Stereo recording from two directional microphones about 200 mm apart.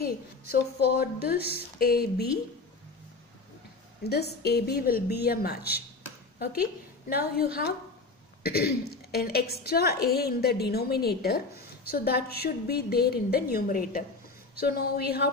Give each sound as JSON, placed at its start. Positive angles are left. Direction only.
{"t": 0.0, "sound": "a woman's voice", "side_deg": 50}
{"t": 4.0, "sound": "a woman's voice", "side_deg": 55}